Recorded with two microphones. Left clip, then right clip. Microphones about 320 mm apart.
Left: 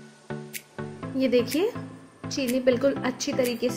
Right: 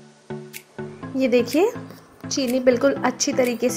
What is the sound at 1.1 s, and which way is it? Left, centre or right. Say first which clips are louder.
A woman's voice: right 4 dB; centre.